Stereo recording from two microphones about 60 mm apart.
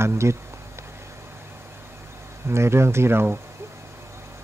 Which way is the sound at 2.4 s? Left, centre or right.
Right.